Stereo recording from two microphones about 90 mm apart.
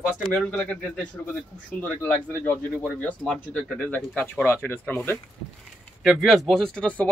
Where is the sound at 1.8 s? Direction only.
20° left (ahead or behind).